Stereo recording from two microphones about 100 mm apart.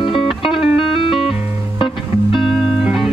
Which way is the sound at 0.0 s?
60° left (ahead or behind).